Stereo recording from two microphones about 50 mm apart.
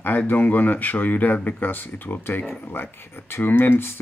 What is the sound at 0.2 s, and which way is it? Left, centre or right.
Speech, left.